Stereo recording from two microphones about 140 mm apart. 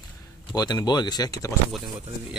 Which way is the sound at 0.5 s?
30° left (ahead or behind).